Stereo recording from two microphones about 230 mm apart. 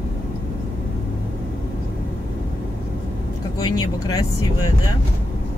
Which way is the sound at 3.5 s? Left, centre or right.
Centre.